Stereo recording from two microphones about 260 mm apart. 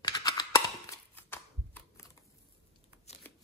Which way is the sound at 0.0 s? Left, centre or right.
Centre.